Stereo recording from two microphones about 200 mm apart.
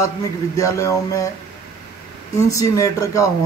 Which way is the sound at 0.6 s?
15° left (ahead or behind).